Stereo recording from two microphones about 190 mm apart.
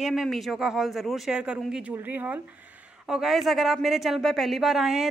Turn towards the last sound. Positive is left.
turn(degrees=0)  # may be behind; listen again after turning